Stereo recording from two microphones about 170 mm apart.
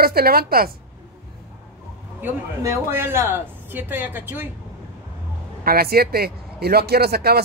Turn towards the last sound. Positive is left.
turn(degrees=-65)  # may be behind; listen again after turning